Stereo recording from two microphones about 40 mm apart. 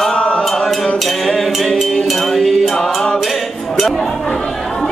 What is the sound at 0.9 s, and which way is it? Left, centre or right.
Music, centre.